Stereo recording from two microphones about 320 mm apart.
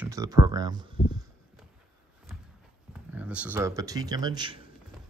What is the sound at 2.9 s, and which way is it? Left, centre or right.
A man's voice, centre.